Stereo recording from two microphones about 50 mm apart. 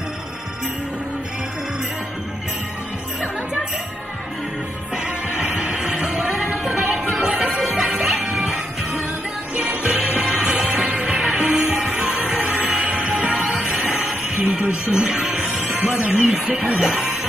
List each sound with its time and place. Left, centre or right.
4.9 s music: centre